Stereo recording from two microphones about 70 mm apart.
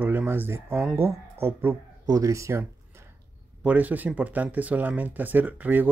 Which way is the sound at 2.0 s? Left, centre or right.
Right.